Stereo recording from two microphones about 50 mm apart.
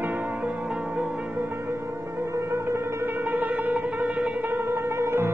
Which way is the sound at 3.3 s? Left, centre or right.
Right.